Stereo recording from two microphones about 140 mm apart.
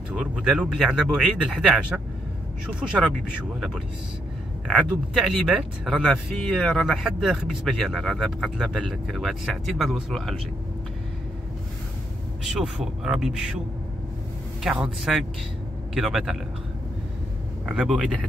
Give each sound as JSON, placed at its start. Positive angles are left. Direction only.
{"t": 0.1, "sound": "speech", "side_deg": -5}
{"t": 4.6, "sound": "speech", "side_deg": -5}
{"t": 12.4, "sound": "speech", "side_deg": 0}
{"t": 14.6, "sound": "speech", "side_deg": 0}
{"t": 17.6, "sound": "speech", "side_deg": -5}